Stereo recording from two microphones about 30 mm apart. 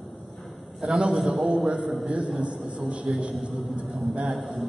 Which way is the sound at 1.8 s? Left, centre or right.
Right.